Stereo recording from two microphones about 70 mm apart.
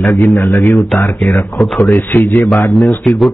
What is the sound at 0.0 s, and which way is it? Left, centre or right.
Speech, left.